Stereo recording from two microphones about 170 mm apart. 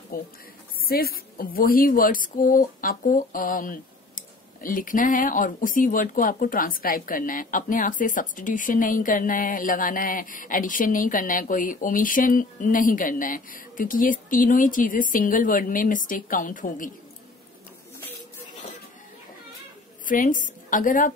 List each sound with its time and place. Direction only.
0.1 s a woman's voice: 55° left (ahead or behind)
20.1 s a woman's voice: 50° left (ahead or behind)